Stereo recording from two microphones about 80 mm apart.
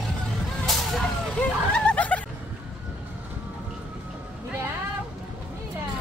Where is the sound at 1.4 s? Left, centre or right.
Centre.